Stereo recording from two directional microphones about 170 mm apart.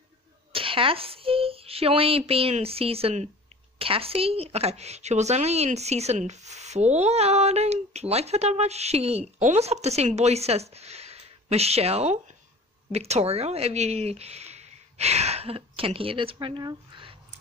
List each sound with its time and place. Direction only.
0.5 s speech: 30° right (ahead or behind)